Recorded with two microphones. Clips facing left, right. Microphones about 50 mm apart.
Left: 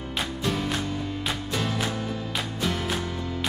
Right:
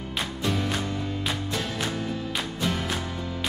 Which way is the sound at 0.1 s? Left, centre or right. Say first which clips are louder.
Even; centre.